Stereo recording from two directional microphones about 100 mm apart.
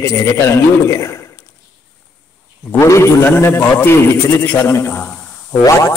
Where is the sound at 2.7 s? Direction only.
25° left (ahead or behind).